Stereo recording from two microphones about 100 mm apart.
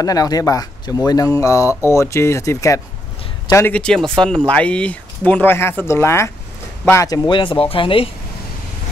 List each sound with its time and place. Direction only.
0.0 s speech: 40° left (ahead or behind)
3.7 s speech: 5° left (ahead or behind); by 7.2 s 30° left (ahead or behind)
7.2 s speech: 55° left (ahead or behind)